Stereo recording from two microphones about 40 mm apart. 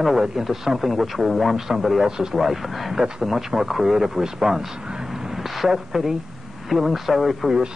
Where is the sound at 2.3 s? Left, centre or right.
Centre.